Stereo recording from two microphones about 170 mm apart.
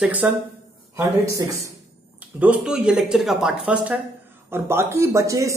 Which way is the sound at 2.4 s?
5° right (ahead or behind).